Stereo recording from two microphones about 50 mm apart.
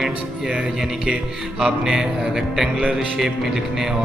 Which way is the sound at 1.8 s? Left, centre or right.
Centre.